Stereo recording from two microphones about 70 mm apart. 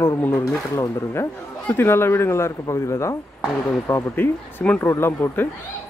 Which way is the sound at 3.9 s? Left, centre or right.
Left.